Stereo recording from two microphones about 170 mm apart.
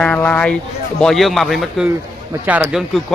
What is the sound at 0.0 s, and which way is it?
A man's voice, 5° left (ahead or behind).